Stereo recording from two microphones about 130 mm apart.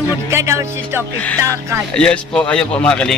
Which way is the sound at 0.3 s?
20° right (ahead or behind).